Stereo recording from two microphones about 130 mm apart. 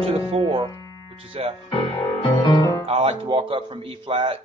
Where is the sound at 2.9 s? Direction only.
45° right (ahead or behind).